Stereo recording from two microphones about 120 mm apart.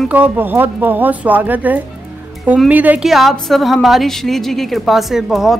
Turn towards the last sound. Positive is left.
turn(degrees=0)  # may be behind; listen again after turning